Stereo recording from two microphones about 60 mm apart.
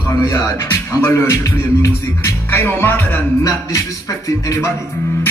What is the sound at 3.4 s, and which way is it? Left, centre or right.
Speech, left.